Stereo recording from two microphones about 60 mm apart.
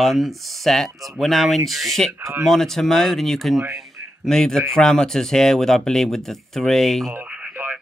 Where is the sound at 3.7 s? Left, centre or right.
Centre.